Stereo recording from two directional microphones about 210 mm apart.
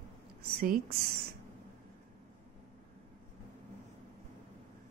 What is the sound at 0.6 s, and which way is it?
Speech, 45° right (ahead or behind).